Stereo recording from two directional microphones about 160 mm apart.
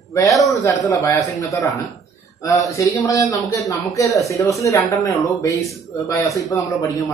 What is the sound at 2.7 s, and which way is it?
Speech, 20° left (ahead or behind).